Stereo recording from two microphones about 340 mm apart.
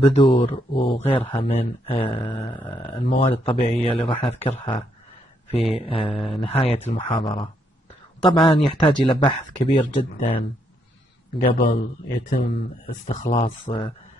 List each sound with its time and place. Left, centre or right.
0.0 s speech: centre